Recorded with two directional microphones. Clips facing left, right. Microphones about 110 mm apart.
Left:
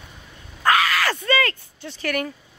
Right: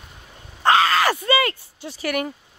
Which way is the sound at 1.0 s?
15° right (ahead or behind).